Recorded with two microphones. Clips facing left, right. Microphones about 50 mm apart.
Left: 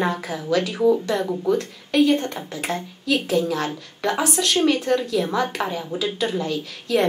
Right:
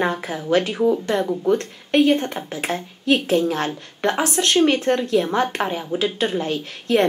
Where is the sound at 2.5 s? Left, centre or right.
Right.